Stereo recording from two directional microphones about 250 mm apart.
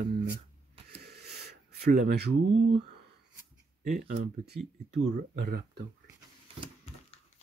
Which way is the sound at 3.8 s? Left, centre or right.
Right.